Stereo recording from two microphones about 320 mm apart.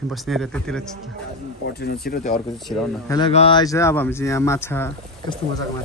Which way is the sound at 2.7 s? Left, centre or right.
Centre.